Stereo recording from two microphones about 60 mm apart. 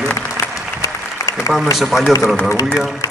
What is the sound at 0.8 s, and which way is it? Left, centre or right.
Applause, left.